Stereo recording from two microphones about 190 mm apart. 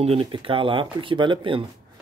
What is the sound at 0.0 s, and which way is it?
Speech, 30° right (ahead or behind).